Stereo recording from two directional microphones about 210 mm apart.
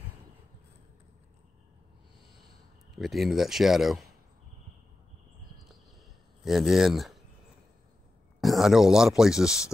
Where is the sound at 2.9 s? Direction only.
Centre (ahead or behind).